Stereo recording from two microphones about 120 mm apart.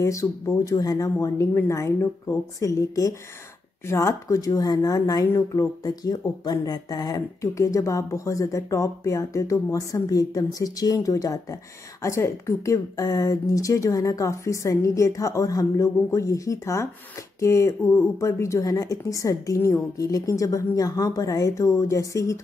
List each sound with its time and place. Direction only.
0.0 s speech: 25° left (ahead or behind)